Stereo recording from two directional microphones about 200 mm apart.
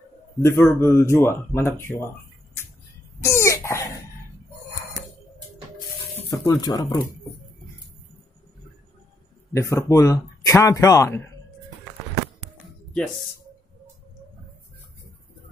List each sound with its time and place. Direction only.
0.4 s speech: 15° left (ahead or behind)
3.2 s cough: 15° left (ahead or behind)
6.3 s speech: 15° left (ahead or behind)
9.5 s speech: 15° left (ahead or behind)